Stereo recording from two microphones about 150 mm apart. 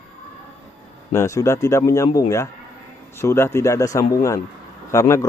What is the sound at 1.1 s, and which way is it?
Speech, 20° left (ahead or behind).